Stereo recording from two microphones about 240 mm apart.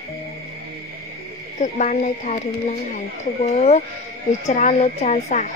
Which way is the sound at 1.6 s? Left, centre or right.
Left.